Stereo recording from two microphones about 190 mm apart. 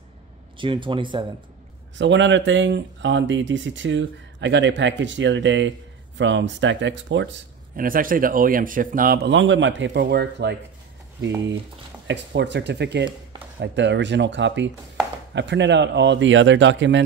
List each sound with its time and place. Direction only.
0.6 s speech: 25° right (ahead or behind)
2.0 s speech: 70° right (ahead or behind)
7.7 s speech: 50° right (ahead or behind)
9.3 s speech: 85° right; by 10.6 s 60° right (ahead or behind)
12.1 s speech: 65° right (ahead or behind)